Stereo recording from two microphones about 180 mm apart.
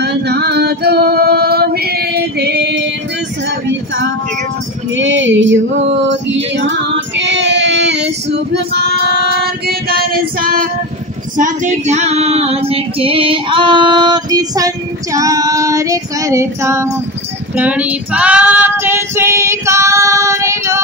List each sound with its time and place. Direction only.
0.0 s female singing: 65° right (ahead or behind)
4.9 s female singing: 90° right; by 10.7 s 55° right (ahead or behind)
11.3 s female singing: 45° right (ahead or behind); by 20.8 s 15° right (ahead or behind)